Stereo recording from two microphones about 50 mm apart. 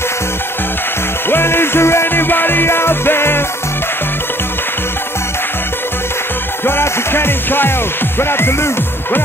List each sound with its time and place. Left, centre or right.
1.3 s music: left
6.6 s music: left